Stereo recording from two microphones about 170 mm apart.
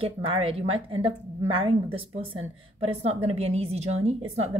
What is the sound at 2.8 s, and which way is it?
Speech, 35° right (ahead or behind).